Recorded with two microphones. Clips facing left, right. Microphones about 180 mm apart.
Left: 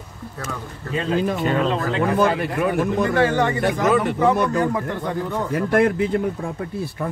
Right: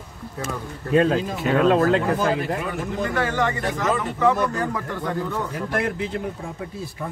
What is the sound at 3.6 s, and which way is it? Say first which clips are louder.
Speech: left 5 dB; 65° left (ahead or behind).